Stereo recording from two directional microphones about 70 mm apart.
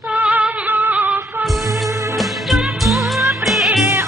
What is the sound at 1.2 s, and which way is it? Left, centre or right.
Music, right.